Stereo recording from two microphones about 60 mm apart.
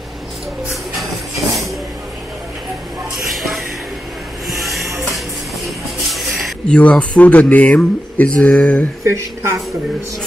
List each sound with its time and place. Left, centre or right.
0.7 s music: centre
3.3 s music: centre
6.1 s a sound: centre
6.7 s speech: left
9.0 s speech: right